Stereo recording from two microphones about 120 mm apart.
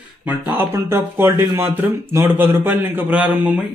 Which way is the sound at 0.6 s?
20° right (ahead or behind).